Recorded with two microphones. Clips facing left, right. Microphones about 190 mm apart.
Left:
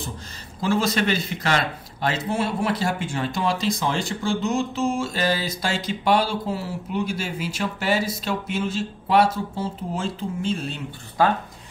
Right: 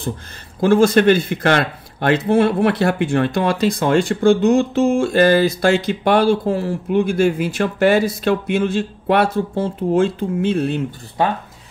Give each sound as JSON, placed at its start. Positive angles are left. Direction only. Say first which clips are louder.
{"t": 0.6, "sound": "speech", "louder": "right 9 dB", "side_deg": -55}
{"t": 11.2, "sound": "speech", "louder": "right 1 dB", "side_deg": -20}